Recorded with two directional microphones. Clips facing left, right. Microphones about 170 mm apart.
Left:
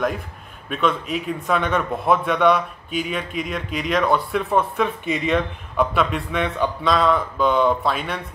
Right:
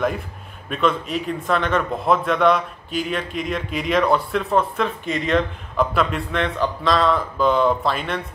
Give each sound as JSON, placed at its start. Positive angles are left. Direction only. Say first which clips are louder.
{"t": 0.7, "sound": "a man's voice", "louder": "right 1 dB", "side_deg": 0}